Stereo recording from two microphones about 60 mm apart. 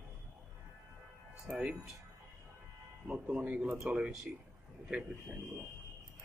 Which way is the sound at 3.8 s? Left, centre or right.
Centre.